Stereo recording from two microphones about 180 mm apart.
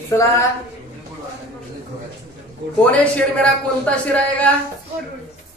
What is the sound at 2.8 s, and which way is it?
A man's voice, 5° left (ahead or behind).